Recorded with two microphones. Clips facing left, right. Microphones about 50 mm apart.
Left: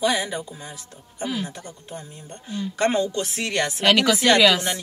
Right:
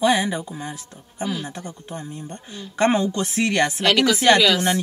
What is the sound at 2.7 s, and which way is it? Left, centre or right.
Speech, right.